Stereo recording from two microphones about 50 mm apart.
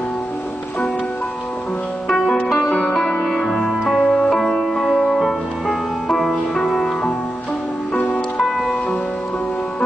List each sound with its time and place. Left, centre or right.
2.0 s music: centre
6.0 s music: centre
8.0 s music: left